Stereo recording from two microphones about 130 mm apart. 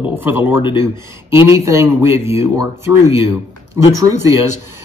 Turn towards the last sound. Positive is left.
turn(degrees=-20)  # may be behind; listen again after turning